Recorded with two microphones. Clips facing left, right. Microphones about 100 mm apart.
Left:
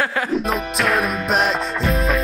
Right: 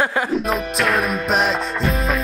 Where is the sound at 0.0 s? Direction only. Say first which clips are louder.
Right 2 dB; 20° right (ahead or behind).